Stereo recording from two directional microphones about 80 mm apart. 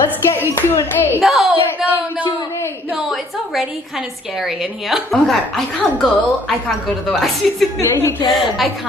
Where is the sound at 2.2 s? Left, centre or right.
Left.